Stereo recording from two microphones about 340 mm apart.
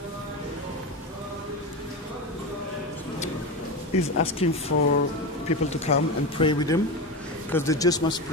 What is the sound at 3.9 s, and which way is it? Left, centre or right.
Speech, centre.